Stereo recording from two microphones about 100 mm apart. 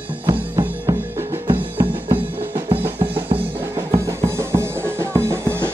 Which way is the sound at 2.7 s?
70° right (ahead or behind).